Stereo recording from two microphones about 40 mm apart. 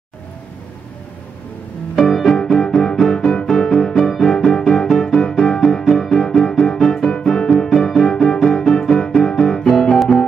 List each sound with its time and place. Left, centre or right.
2.0 s music: centre
4.4 s music: left